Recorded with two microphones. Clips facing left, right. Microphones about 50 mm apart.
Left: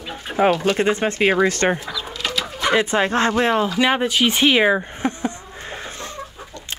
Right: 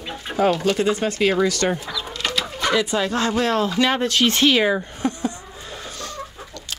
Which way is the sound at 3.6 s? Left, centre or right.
Centre.